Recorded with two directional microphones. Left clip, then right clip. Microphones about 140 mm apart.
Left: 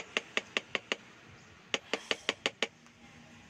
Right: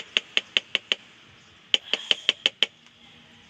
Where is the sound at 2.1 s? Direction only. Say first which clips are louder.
Right 12 dB; 10° left (ahead or behind).